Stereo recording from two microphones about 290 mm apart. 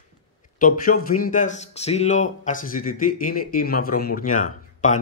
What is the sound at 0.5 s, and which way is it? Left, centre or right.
Speech, left.